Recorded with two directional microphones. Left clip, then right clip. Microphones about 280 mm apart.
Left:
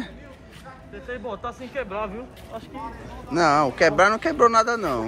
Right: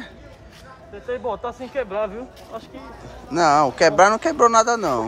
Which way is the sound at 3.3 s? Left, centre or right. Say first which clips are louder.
Right 3 dB; centre.